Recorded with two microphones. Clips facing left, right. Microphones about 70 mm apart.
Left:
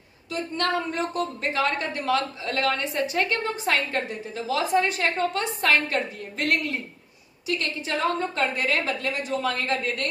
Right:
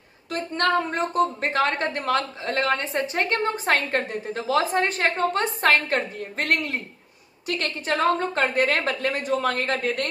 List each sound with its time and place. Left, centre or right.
0.3 s a woman's voice: right